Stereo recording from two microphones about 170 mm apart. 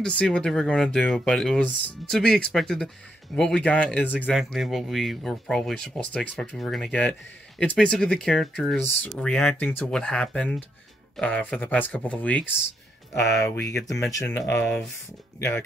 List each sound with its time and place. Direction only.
0.0 s speech: 5° left (ahead or behind)